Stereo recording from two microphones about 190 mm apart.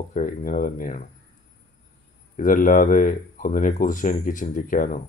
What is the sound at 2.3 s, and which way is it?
Speech, 45° left (ahead or behind).